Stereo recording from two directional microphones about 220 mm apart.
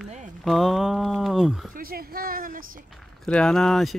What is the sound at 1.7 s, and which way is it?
A woman's voice, 40° right (ahead or behind).